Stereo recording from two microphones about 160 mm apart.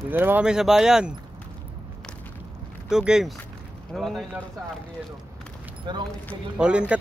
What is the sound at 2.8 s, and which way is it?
Speech, 5° right (ahead or behind).